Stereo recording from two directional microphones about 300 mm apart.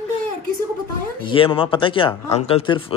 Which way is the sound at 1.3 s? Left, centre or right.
Centre.